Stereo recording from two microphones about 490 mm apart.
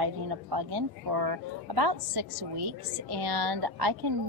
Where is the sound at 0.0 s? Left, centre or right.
Right.